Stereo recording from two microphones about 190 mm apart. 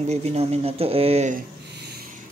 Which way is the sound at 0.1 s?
35° right (ahead or behind).